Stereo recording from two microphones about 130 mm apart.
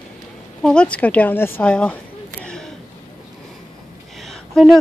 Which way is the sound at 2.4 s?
5° left (ahead or behind).